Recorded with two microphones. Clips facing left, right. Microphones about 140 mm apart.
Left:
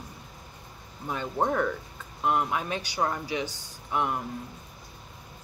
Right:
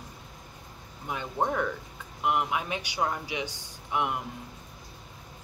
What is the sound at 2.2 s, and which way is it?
Speech, 10° right (ahead or behind).